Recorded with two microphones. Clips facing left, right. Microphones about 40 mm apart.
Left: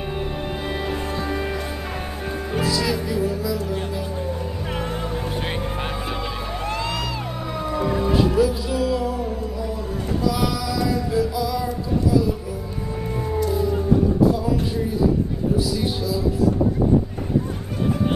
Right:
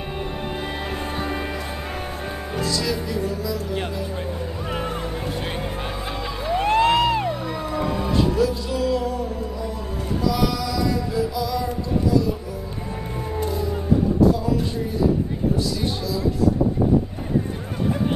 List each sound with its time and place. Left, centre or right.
2.6 s music: centre
6.6 s music: right
7.2 s music: centre
13.5 s music: centre
15.5 s music: centre